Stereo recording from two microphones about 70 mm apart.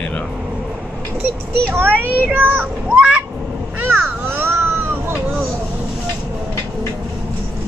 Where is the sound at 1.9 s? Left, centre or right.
Right.